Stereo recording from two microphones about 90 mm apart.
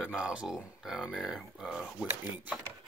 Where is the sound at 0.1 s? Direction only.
10° right (ahead or behind).